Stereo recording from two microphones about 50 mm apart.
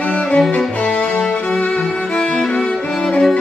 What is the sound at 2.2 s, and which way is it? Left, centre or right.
Music, centre.